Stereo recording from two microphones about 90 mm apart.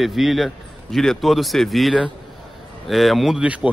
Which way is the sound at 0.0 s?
Centre (ahead or behind).